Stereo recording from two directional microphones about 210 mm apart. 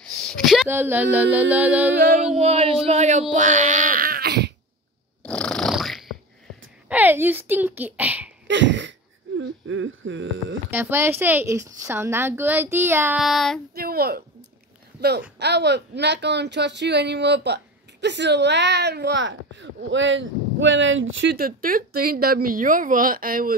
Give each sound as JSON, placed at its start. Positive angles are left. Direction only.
{"t": 0.0, "sound": "a sound", "side_deg": 5}
{"t": 0.7, "sound": "a woman's voice", "side_deg": -10}
{"t": 2.4, "sound": "speech", "side_deg": -30}
{"t": 5.2, "sound": "snoring", "side_deg": 5}
{"t": 6.9, "sound": "a woman's voice", "side_deg": -10}
{"t": 8.5, "sound": "a sound", "side_deg": -60}
{"t": 9.4, "sound": "speech", "side_deg": -70}
{"t": 10.7, "sound": "a woman's voice", "side_deg": -10}
{"t": 13.7, "sound": "speech", "side_deg": -45}